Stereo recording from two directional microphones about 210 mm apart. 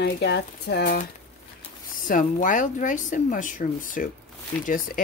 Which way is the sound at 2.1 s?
40° left (ahead or behind).